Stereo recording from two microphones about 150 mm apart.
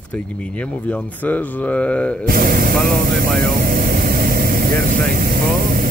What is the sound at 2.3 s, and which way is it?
Speech, 75° right (ahead or behind).